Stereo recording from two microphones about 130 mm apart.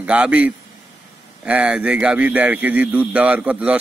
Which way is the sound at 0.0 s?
10° right (ahead or behind).